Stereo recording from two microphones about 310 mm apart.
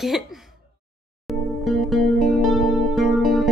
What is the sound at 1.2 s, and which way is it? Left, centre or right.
Music, centre.